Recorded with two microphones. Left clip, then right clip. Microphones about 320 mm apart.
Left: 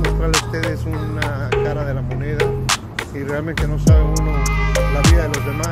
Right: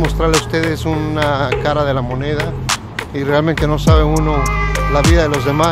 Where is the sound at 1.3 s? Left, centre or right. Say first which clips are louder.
Right 2 dB; centre.